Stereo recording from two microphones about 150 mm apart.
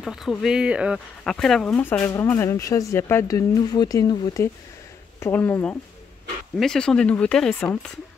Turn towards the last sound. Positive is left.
turn(degrees=5)  # may be behind; listen again after turning